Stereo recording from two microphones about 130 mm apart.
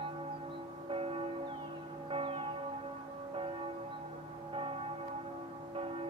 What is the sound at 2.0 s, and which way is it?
Music, 45° right (ahead or behind).